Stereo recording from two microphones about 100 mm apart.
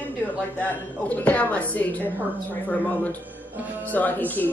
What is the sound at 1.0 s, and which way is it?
A woman's voice, 15° left (ahead or behind).